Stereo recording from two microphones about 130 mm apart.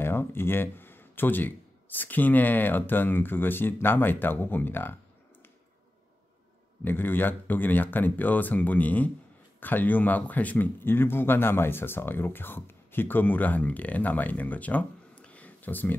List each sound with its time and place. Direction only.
0.0 s speech: 15° left (ahead or behind)
6.8 s speech: 15° left (ahead or behind)